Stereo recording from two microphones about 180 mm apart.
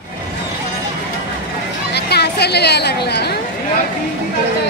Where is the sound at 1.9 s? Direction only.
65° left (ahead or behind).